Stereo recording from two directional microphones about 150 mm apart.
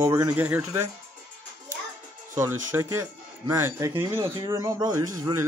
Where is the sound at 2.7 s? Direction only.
20° right (ahead or behind).